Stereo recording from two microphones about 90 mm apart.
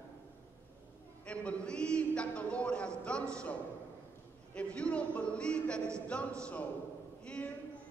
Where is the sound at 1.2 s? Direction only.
10° left (ahead or behind).